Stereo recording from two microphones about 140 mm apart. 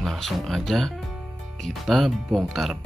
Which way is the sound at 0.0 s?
Centre (ahead or behind).